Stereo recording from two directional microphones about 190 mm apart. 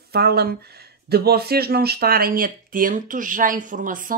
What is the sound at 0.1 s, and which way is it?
Speech, 55° right (ahead or behind).